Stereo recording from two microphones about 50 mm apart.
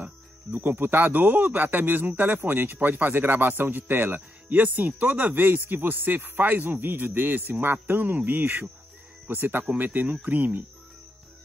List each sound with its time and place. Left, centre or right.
0.0 s speech: right